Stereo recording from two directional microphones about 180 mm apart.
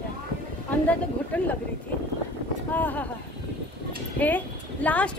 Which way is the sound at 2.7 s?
10° left (ahead or behind).